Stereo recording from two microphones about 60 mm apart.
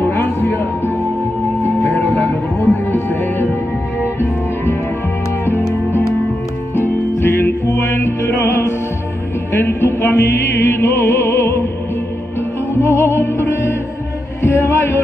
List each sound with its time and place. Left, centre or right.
0.1 s music: left
2.0 s music: left
6.8 s music: left
12.8 s music: left